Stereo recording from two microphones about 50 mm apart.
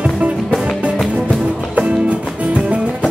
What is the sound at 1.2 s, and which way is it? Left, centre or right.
Music, centre.